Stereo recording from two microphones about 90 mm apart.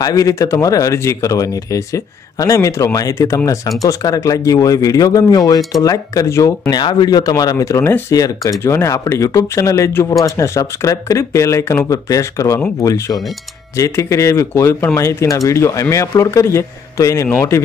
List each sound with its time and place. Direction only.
0.0 s speech: 40° left (ahead or behind)
6.7 s speech: 55° left (ahead or behind); by 17.6 s 30° left (ahead or behind)